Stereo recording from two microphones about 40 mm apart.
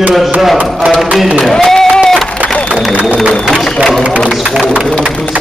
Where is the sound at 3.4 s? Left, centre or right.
Centre.